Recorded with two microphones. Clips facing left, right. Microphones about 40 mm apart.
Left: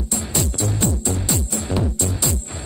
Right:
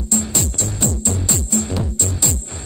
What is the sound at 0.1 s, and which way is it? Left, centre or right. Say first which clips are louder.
Music: right 3 dB; centre.